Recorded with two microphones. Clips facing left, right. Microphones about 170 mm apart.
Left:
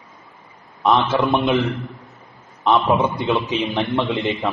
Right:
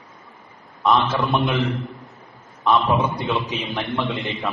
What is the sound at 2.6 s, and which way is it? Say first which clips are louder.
A man's voice: left 2 dB; 20° left (ahead or behind).